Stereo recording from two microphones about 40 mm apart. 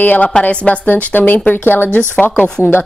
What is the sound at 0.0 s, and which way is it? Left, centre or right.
Speech, left.